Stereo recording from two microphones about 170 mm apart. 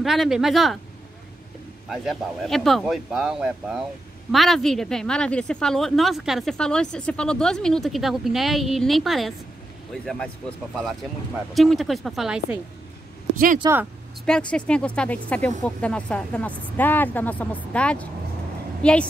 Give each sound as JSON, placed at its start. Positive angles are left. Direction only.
{"t": 0.0, "sound": "speech", "side_deg": 0}
{"t": 1.9, "sound": "speech", "side_deg": 0}
{"t": 11.5, "sound": "speech", "side_deg": 0}
{"t": 13.6, "sound": "speech", "side_deg": -20}
{"t": 14.2, "sound": "speech", "side_deg": 5}